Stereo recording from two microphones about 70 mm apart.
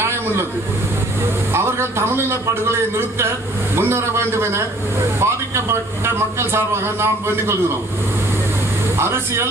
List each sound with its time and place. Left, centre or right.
1.5 s a man's voice: right
3.7 s a man's voice: right
8.9 s speech: right